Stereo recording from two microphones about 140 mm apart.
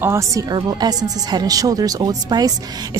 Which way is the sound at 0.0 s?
20° right (ahead or behind).